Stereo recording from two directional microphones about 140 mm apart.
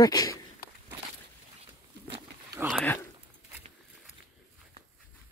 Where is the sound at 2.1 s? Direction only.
20° right (ahead or behind).